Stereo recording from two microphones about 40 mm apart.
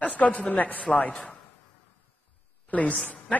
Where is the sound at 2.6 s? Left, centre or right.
Left.